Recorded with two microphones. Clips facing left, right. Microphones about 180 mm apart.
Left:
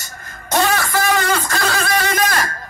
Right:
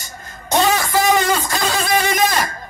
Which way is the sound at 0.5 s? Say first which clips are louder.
Right 1 dB; 20° right (ahead or behind).